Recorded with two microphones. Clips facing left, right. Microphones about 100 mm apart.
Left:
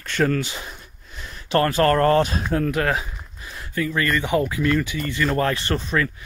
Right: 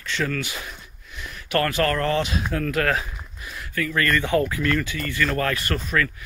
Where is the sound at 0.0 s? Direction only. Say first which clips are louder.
Left 5 dB; 50° left (ahead or behind).